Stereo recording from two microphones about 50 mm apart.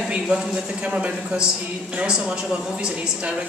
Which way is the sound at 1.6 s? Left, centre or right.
Right.